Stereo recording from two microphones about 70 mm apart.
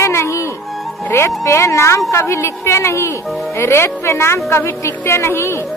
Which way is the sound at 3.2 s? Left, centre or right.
Centre.